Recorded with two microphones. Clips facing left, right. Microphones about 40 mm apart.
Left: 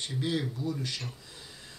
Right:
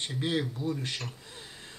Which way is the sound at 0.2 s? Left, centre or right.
Right.